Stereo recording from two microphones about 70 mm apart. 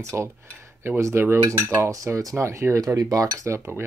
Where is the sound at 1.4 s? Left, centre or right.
Right.